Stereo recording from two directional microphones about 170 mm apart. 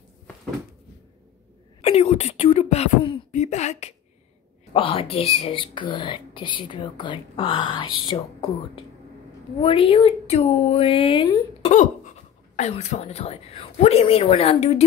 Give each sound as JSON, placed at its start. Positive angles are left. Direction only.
{"t": 1.8, "sound": "speech", "side_deg": 35}
{"t": 9.6, "sound": "a woman's voice", "side_deg": 30}
{"t": 11.7, "sound": "a sound", "side_deg": 45}
{"t": 12.5, "sound": "a woman's voice", "side_deg": 40}